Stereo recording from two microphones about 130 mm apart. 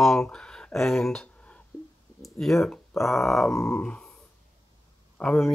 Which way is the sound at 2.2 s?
Centre (ahead or behind).